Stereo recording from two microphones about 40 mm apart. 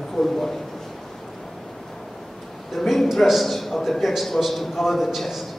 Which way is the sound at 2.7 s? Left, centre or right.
Centre.